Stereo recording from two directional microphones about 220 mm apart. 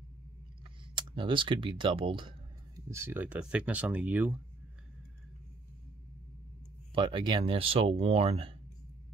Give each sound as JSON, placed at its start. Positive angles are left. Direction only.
{"t": 0.9, "sound": "speech", "side_deg": -20}
{"t": 6.9, "sound": "speech", "side_deg": -25}